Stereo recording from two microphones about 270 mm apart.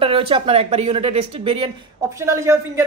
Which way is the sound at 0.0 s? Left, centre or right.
Centre.